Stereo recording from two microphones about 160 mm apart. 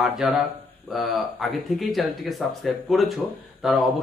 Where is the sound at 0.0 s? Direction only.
Centre (ahead or behind).